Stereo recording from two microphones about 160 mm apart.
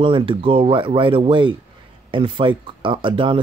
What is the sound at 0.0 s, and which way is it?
Speech, 35° right (ahead or behind).